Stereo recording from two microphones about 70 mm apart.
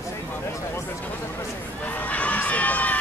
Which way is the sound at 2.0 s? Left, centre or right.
Left.